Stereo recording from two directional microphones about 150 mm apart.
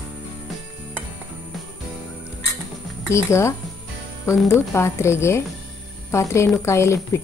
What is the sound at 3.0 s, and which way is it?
A woman's voice, 20° left (ahead or behind).